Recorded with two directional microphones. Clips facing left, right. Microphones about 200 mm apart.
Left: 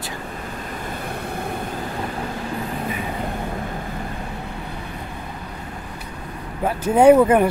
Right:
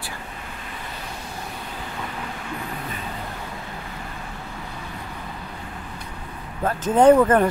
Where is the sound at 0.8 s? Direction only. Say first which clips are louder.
Left 8 dB; 55° left (ahead or behind).